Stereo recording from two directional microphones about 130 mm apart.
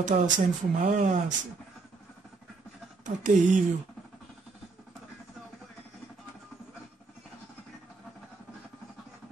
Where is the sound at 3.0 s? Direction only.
70° right (ahead or behind).